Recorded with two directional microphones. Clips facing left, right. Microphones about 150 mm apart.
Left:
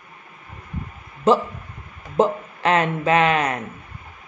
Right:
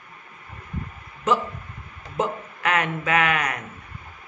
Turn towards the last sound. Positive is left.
turn(degrees=30)  # may be behind; listen again after turning